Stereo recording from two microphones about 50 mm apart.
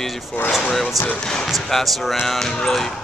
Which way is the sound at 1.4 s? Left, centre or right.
Centre.